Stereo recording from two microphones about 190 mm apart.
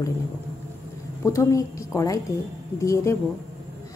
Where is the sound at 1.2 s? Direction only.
15° left (ahead or behind).